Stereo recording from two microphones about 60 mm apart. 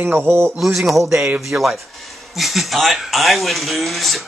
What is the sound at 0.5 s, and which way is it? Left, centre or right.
Speech, centre.